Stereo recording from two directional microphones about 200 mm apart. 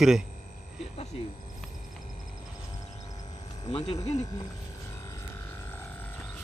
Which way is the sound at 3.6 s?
20° left (ahead or behind).